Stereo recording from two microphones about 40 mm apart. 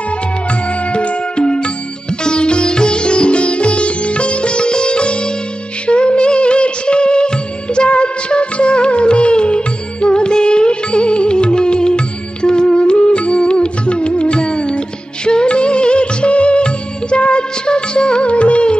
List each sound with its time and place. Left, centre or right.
0.9 s music: left
2.2 s sitar: left
5.9 s music: left
7.7 s music of bollywood: left
10.0 s music: left